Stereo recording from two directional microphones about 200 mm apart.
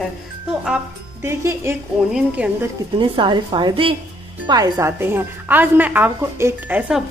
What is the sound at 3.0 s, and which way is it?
A woman's voice, 25° right (ahead or behind).